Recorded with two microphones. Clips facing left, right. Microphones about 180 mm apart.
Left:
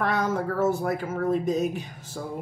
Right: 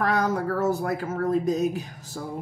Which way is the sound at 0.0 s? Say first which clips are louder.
Right 1 dB; 35° right (ahead or behind).